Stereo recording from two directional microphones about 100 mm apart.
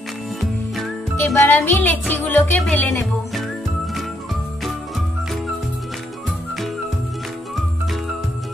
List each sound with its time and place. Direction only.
1.1 s music: 20° left (ahead or behind)